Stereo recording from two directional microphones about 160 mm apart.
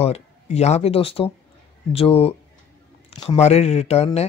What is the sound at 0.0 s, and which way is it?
Speech, 40° left (ahead or behind).